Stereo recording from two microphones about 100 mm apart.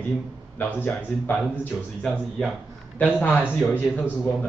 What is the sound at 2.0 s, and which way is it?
Speech, 5° left (ahead or behind).